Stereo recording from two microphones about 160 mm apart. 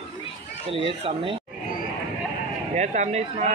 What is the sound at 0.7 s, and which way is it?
Speech, 35° right (ahead or behind).